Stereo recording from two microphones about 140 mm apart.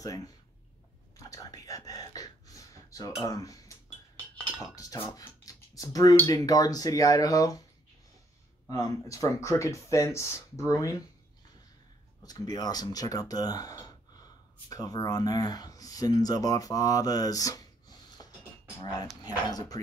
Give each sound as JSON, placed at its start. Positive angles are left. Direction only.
{"t": 0.0, "sound": "speech", "side_deg": 25}
{"t": 1.1, "sound": "whispering", "side_deg": 25}
{"t": 4.7, "sound": "speech", "side_deg": 20}
{"t": 8.6, "sound": "speech", "side_deg": 25}
{"t": 12.3, "sound": "speech", "side_deg": 30}